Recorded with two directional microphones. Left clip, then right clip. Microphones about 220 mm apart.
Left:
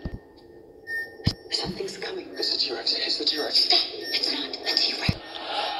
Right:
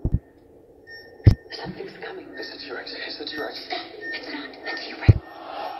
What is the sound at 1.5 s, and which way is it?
Television, 50° left (ahead or behind).